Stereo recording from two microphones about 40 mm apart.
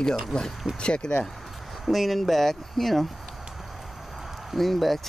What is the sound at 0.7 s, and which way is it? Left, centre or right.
Speech, left.